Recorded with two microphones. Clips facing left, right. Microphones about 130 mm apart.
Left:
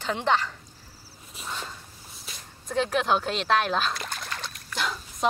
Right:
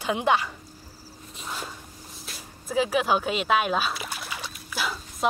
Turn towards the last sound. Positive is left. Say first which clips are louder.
# even
turn(degrees=-5)  # may be behind; listen again after turning